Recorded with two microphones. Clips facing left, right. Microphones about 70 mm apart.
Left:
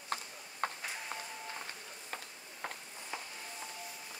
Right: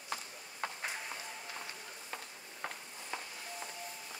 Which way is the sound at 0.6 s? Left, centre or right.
Left.